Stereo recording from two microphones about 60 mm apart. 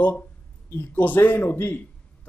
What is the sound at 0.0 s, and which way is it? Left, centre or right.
A man's voice, left.